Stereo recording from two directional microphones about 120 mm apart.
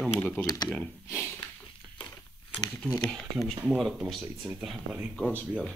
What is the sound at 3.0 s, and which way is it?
Speech, centre (ahead or behind).